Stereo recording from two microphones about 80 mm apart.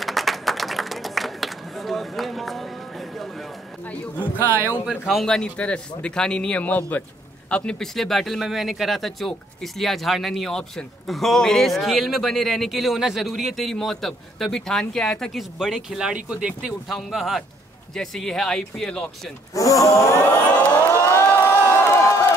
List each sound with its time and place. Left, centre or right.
0.0 s clapping: centre
3.8 s speech: centre
4.8 s speech: centre
5.2 s a man's voice: centre
7.8 s speech: centre
16.9 s speech: centre
19.5 s speech: left
20.5 s a sound: centre
20.9 s crowd: left